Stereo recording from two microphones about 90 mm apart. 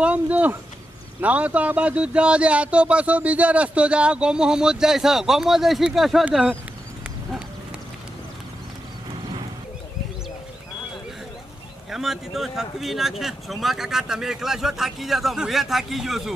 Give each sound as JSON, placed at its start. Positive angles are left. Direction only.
{"t": 0.0, "sound": "speech", "side_deg": -15}
{"t": 11.9, "sound": "speech", "side_deg": -5}